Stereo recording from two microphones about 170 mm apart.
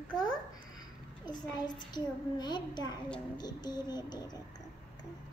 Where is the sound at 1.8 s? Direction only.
25° left (ahead or behind).